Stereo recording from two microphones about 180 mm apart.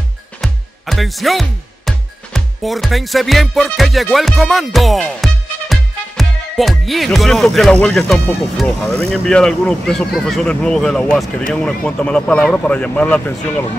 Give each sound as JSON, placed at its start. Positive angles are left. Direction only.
{"t": 0.4, "sound": "speech", "side_deg": 0}